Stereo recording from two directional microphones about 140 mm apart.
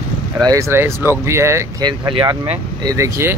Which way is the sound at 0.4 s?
25° right (ahead or behind).